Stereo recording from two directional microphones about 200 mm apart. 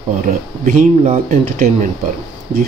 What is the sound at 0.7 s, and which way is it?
Speech, 30° right (ahead or behind).